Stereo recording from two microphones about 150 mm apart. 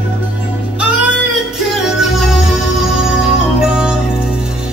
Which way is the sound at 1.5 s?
Centre (ahead or behind).